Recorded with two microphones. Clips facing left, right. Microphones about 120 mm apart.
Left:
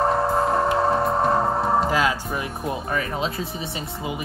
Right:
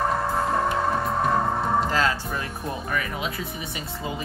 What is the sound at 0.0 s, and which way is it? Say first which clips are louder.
Music: left 4 dB; 30° left (ahead or behind).